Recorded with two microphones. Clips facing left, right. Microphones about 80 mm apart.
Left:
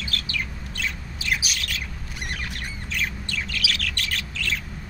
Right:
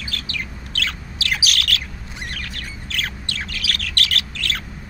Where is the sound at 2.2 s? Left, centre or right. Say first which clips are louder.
Even; left.